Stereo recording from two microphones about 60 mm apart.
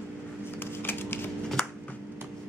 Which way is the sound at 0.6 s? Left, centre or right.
Left.